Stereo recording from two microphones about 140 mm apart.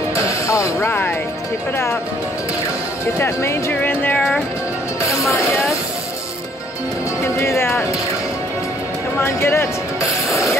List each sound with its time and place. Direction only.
0.1 s music: 20° left (ahead or behind)
0.8 s speech: 15° left (ahead or behind)
3.2 s speech: 20° left (ahead or behind)
7.3 s speech: 20° left (ahead or behind)
9.2 s speech: 20° left (ahead or behind)